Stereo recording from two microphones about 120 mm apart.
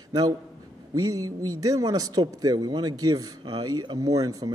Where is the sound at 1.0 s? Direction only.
30° right (ahead or behind).